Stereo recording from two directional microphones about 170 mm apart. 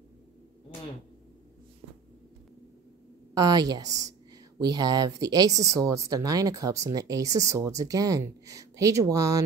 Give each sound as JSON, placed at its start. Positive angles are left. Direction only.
{"t": 3.3, "sound": "speech", "side_deg": -20}